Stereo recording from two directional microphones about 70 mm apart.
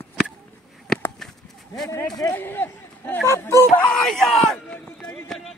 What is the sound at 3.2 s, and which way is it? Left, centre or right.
Speech, left.